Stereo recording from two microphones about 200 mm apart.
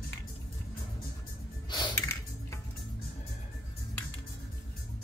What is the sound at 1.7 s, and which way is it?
Music, 20° left (ahead or behind).